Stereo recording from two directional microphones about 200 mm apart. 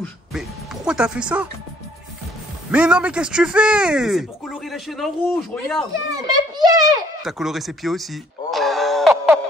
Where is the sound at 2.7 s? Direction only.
5° right (ahead or behind).